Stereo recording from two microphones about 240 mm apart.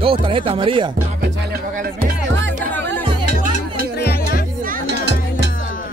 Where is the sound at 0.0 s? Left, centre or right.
Right.